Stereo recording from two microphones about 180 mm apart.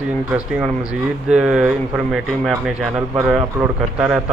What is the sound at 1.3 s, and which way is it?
Speech, 5° right (ahead or behind).